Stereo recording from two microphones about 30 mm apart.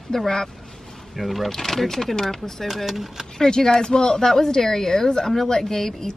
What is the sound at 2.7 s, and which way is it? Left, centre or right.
Speech, centre.